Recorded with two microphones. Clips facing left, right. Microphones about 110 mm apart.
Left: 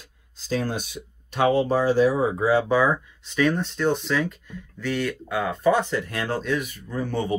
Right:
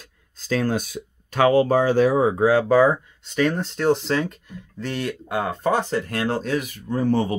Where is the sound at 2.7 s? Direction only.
35° right (ahead or behind).